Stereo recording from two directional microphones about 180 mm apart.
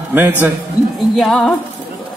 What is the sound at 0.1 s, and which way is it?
Speech, 10° right (ahead or behind).